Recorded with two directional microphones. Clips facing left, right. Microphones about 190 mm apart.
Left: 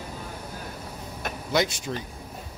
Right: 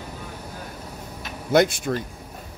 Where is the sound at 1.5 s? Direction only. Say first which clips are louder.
Right 7 dB; 55° right (ahead or behind).